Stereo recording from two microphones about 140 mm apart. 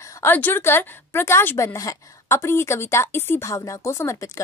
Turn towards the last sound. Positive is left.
turn(degrees=20)  # may be behind; listen again after turning